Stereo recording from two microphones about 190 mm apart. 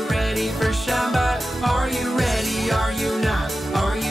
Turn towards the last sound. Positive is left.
turn(degrees=0)  # may be behind; listen again after turning